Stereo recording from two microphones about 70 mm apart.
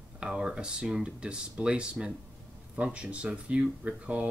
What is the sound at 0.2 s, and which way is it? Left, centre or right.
Speech, centre.